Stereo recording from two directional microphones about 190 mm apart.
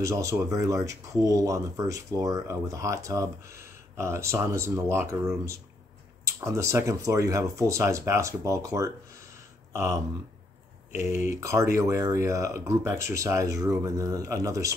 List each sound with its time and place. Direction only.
0.0 s speech: 15° right (ahead or behind)
9.7 s a sound: 15° right (ahead or behind)
11.0 s speech: 15° right (ahead or behind)